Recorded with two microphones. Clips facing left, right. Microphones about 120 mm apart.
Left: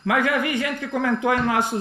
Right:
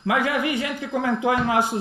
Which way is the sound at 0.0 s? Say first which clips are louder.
Left 1 dB; 20° right (ahead or behind).